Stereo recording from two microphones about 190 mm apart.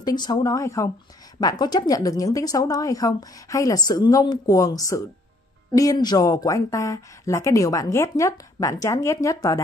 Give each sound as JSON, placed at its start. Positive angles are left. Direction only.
{"t": 0.0, "sound": "a woman's voice", "side_deg": 20}